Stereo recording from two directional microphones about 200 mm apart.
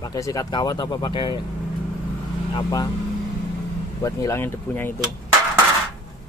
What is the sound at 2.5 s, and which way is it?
Speech, 20° left (ahead or behind).